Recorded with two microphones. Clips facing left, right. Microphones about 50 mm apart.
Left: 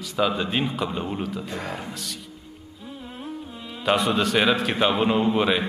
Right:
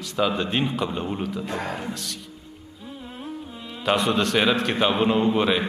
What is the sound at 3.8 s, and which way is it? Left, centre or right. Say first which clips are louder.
A man's voice: even; centre.